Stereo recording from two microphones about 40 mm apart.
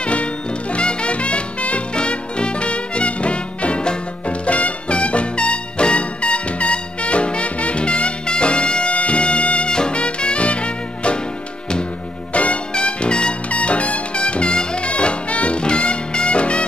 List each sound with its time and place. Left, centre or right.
0.0 s music: left
12.4 s music: left